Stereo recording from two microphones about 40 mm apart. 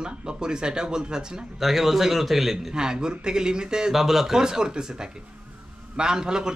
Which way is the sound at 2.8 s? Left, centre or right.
Centre.